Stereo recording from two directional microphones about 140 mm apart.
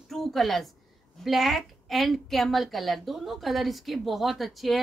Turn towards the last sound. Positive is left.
turn(degrees=0)  # may be behind; listen again after turning